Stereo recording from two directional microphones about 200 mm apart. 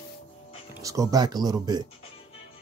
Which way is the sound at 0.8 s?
15° right (ahead or behind).